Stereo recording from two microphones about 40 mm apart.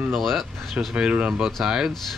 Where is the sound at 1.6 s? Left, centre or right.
Centre.